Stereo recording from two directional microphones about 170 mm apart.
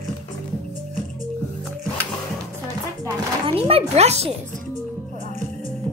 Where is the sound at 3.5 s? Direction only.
35° right (ahead or behind).